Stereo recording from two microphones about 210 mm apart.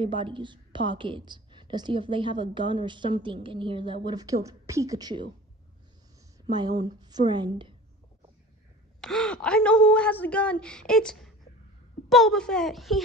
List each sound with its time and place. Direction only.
0.0 s a woman's voice: 25° right (ahead or behind)
6.5 s a woman's voice: 20° right (ahead or behind)
9.0 s speech: 5° left (ahead or behind)